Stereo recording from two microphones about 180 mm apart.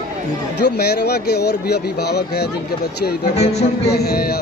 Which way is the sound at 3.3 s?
40° left (ahead or behind).